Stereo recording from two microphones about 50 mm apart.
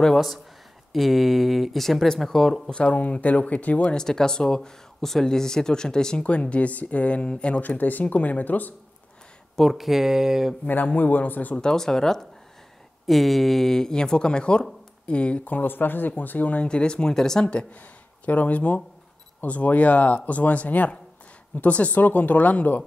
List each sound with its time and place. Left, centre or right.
0.0 s speech: centre
2.7 s speech: left
3.8 s speech: centre
6.2 s speech: left
7.6 s speech: left
9.6 s speech: centre
10.6 s speech: left
11.5 s speech: centre
15.4 s speech: left
16.6 s speech: centre
17.5 s speech: left